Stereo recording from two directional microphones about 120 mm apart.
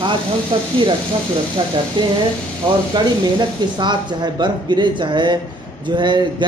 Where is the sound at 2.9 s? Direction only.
40° right (ahead or behind).